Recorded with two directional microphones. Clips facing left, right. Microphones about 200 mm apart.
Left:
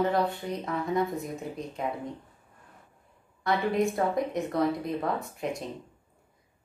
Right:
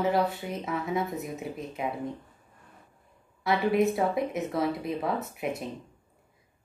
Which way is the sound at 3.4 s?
5° right (ahead or behind).